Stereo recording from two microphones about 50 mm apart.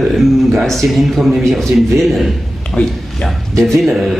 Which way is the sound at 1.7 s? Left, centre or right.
Right.